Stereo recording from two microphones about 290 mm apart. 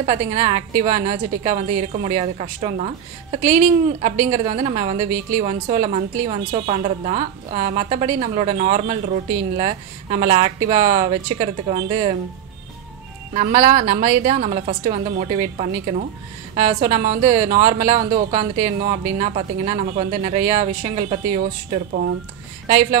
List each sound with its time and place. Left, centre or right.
0.0 s a woman's voice: right
13.3 s a woman's voice: right
22.7 s a woman's voice: right